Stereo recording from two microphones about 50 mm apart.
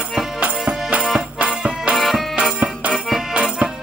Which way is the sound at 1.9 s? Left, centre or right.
Centre.